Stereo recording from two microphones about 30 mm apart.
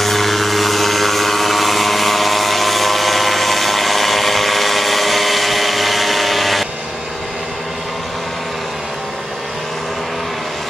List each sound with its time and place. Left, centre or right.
0.0 s vehicle: centre